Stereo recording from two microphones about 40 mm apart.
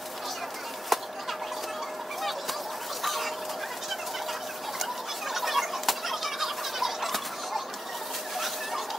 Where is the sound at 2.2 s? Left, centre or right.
Centre.